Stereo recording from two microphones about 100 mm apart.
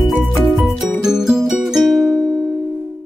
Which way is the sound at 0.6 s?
5° right (ahead or behind).